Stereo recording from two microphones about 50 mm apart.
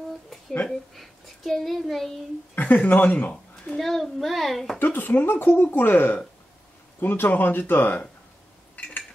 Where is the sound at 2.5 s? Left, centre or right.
Left.